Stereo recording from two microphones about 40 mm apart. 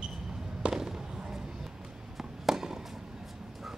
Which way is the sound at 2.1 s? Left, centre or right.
Centre.